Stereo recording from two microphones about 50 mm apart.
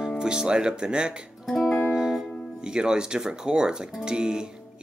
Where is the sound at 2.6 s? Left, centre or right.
Centre.